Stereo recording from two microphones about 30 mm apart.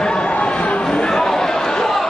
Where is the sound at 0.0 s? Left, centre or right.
Left.